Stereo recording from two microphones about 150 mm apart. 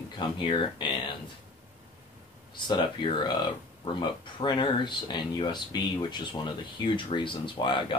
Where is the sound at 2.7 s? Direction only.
30° left (ahead or behind).